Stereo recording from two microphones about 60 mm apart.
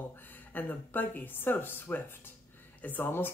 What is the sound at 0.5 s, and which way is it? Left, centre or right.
Speech, left.